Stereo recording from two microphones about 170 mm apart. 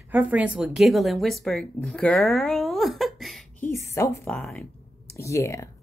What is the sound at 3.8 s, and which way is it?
Speech, 15° left (ahead or behind).